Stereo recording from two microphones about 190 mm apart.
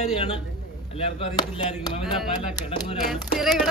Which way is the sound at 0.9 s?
30° left (ahead or behind).